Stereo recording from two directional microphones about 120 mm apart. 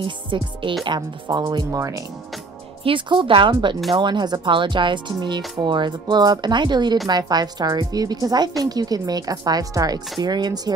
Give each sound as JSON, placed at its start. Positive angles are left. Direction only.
{"t": 0.0, "sound": "speech", "side_deg": -45}
{"t": 1.8, "sound": "speech", "side_deg": -25}
{"t": 2.8, "sound": "speech", "side_deg": -45}